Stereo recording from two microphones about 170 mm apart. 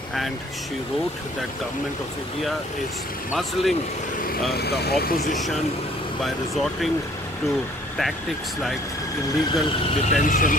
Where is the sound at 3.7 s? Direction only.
55° left (ahead or behind).